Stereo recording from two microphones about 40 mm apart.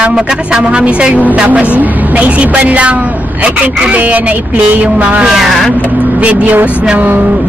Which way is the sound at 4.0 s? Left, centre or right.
Right.